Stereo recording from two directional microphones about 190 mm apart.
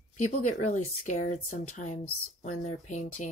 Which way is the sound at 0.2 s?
40° left (ahead or behind).